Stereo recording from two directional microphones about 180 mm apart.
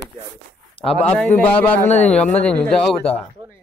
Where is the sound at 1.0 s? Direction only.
10° left (ahead or behind).